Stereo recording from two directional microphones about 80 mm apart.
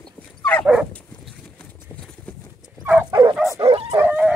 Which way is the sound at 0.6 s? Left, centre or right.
Centre.